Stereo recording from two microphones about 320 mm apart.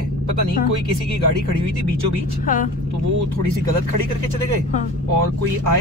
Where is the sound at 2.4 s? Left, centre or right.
Left.